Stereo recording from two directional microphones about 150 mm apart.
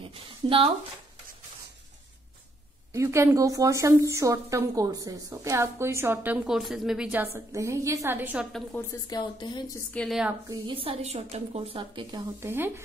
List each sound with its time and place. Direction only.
0.0 s speech: 35° right (ahead or behind)
2.9 s a woman's voice: 20° right (ahead or behind)
7.3 s a woman's voice: 20° right (ahead or behind)
9.0 s a woman's voice: 30° left (ahead or behind)
9.9 s a woman's voice: centre (ahead or behind)
10.7 s a woman's voice: 40° right (ahead or behind)
12.4 s speech: 15° right (ahead or behind)